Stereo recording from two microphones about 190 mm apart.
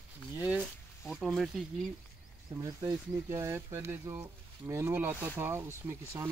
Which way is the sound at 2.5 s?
15° right (ahead or behind).